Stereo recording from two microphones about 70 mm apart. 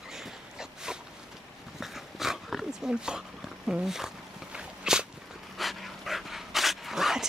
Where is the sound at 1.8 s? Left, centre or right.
Centre.